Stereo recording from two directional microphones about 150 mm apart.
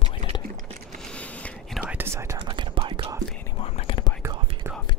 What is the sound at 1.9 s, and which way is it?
Whispering, 15° right (ahead or behind).